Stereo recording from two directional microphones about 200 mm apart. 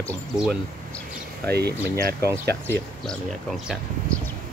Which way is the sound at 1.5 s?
55° right (ahead or behind).